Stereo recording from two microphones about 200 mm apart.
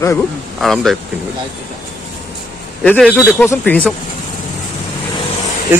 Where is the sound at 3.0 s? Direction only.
5° right (ahead or behind).